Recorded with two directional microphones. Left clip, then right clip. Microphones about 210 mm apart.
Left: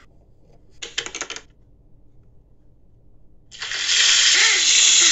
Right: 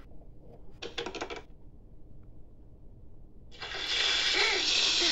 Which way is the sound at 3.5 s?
5° left (ahead or behind).